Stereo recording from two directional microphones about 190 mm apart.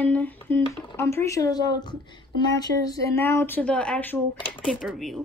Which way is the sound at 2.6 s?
20° left (ahead or behind).